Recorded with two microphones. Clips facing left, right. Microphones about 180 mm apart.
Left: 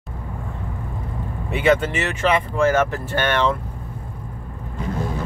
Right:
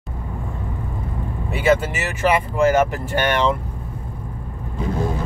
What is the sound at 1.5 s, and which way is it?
Speech, 5° right (ahead or behind).